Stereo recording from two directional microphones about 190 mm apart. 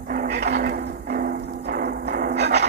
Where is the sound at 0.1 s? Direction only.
50° right (ahead or behind).